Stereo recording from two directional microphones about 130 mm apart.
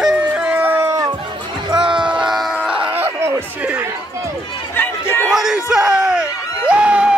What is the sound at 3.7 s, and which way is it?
Chatter, 20° right (ahead or behind).